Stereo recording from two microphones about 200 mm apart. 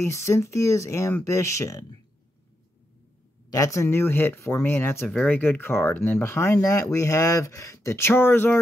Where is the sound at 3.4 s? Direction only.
15° left (ahead or behind).